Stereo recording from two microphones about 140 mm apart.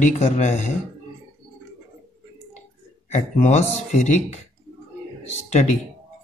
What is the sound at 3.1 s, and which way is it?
Speech, 60° left (ahead or behind).